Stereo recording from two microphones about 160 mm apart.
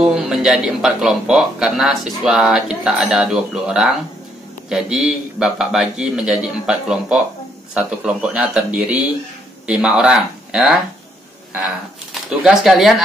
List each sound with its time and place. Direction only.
0.0 s speech: 5° right (ahead or behind)
12.1 s speech: centre (ahead or behind)